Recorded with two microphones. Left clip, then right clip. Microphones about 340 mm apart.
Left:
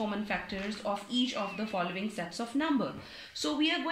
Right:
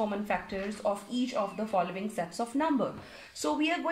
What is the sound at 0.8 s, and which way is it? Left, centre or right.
A woman's voice, right.